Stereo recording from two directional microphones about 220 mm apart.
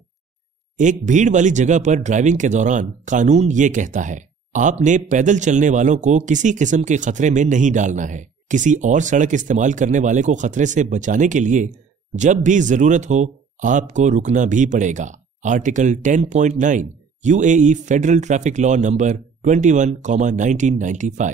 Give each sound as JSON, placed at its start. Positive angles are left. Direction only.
{"t": 0.7, "sound": "speech", "side_deg": -35}